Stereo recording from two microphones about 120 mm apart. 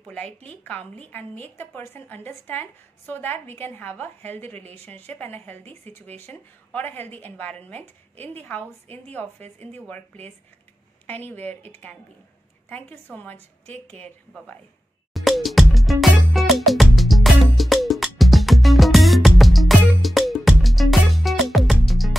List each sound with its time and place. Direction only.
0.0 s a woman's voice: 10° left (ahead or behind)
5.6 s speech: 60° right (ahead or behind)
5.9 s a woman's voice: 15° left (ahead or behind)
15.1 s music: centre (ahead or behind)